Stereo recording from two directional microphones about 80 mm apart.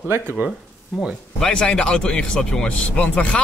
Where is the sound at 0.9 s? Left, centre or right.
Centre.